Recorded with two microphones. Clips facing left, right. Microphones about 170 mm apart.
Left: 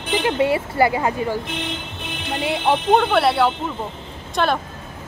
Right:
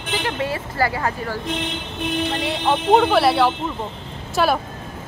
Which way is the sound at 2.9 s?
Centre (ahead or behind).